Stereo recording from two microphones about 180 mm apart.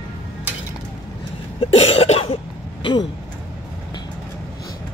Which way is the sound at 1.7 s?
30° left (ahead or behind).